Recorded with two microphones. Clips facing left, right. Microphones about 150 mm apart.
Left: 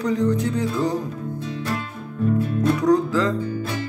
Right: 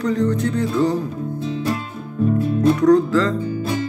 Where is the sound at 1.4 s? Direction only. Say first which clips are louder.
Right 5 dB; 25° right (ahead or behind).